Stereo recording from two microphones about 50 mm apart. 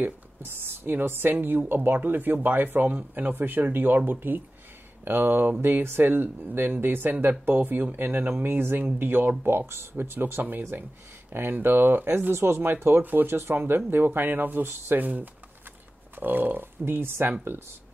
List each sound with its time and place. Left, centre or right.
0.0 s speech: right
9.5 s speech: right
13.3 s speech: right
13.6 s speech: right
15.0 s speech: right